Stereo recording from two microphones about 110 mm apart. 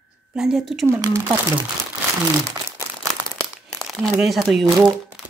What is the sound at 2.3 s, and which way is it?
Crumpling, 35° right (ahead or behind).